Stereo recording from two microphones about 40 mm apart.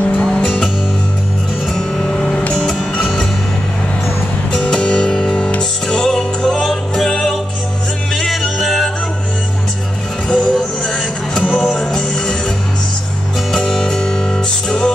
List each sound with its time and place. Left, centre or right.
0.2 s music: centre
1.7 s music: centre
4.6 s music: left
5.9 s music: centre
8.5 s music: centre
10.2 s music: left
10.9 s music: centre
11.4 s music: left
11.8 s music: centre
13.5 s music: centre